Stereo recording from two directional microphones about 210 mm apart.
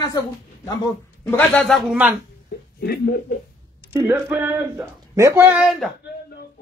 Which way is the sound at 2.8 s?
45° left (ahead or behind).